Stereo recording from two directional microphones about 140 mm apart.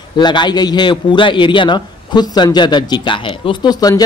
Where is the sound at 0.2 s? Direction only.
30° left (ahead or behind).